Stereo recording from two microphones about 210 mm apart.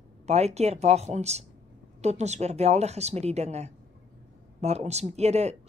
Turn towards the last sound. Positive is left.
turn(degrees=-30)  # may be behind; listen again after turning